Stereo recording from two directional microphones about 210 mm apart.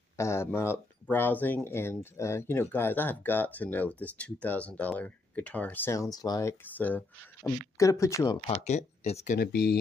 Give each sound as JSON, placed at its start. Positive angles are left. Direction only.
{"t": 0.2, "sound": "speech", "side_deg": 10}
{"t": 8.5, "sound": "speech", "side_deg": 30}
{"t": 9.4, "sound": "speech", "side_deg": 50}